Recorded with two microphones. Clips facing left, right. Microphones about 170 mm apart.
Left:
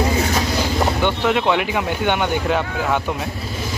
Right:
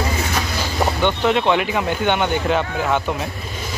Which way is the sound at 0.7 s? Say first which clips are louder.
Right 3 dB; 5° left (ahead or behind).